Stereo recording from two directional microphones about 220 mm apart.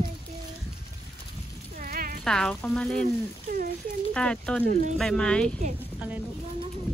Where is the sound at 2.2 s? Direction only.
5° left (ahead or behind).